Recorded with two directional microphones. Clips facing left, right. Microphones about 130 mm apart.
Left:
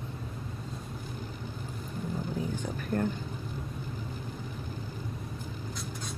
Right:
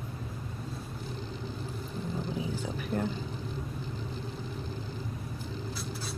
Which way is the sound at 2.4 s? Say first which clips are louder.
Even; 10° right (ahead or behind).